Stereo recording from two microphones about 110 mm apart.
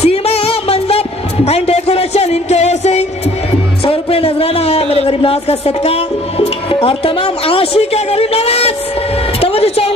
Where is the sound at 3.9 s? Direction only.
65° left (ahead or behind).